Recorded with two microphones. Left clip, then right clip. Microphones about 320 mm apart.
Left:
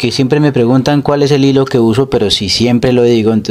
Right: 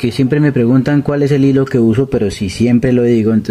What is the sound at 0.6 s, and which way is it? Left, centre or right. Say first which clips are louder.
Speech: left 3 dB; left.